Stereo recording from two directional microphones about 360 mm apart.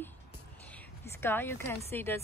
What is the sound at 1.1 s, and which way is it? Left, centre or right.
A woman's voice, centre.